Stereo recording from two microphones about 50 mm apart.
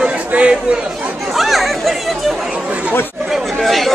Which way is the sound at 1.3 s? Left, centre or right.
Centre.